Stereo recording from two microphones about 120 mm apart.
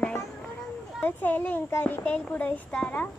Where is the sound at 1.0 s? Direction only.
15° left (ahead or behind).